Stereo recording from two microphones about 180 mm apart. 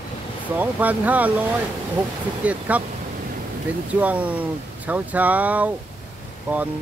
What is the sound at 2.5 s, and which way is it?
Speech, 10° right (ahead or behind).